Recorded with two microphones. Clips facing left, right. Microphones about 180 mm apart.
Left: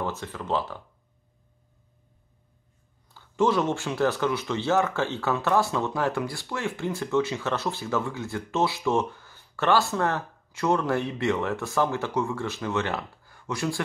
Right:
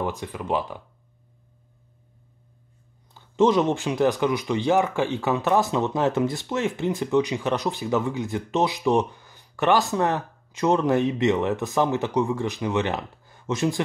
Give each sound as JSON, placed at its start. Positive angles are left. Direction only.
{"t": 0.0, "sound": "speech", "side_deg": -15}
{"t": 3.2, "sound": "speech", "side_deg": -20}